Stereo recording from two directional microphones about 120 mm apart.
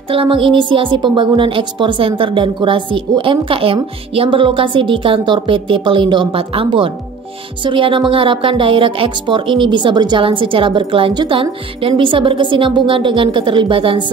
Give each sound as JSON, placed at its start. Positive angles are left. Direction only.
{"t": 0.1, "sound": "a woman's voice", "side_deg": -45}